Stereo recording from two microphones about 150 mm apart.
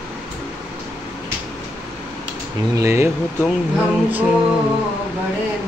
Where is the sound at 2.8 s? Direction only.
20° right (ahead or behind).